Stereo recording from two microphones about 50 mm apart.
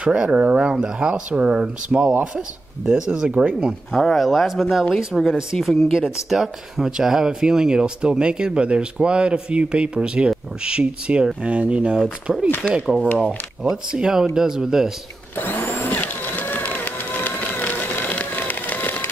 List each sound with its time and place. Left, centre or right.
0.0 s speech: centre
3.9 s speech: centre; by 12.0 s right
12.3 s speech: centre
12.7 s speech: centre
15.3 s vacuum cleaner: left
16.0 s run: left